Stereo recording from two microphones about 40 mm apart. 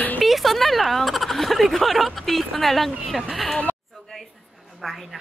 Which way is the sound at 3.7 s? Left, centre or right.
Left.